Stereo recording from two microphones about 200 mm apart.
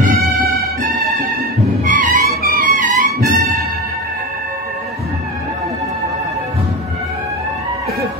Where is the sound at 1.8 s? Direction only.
40° right (ahead or behind).